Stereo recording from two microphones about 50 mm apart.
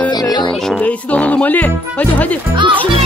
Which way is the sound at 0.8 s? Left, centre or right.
Left.